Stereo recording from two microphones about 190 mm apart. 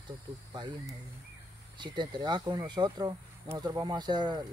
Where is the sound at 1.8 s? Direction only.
25° right (ahead or behind).